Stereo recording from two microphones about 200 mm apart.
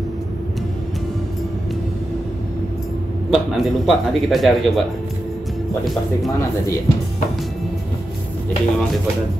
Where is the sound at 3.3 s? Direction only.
Centre (ahead or behind).